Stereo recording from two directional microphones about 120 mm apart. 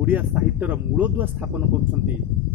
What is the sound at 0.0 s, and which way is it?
A man's voice, 15° right (ahead or behind).